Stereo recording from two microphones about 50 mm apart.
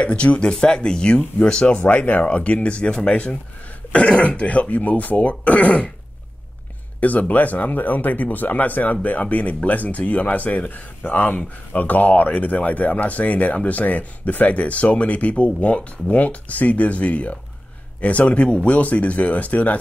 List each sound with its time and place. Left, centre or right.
0.0 s speech: left
7.0 s speech: left